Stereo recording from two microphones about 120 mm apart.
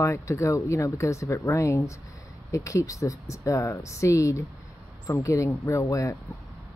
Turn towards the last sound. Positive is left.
turn(degrees=25)  # may be behind; listen again after turning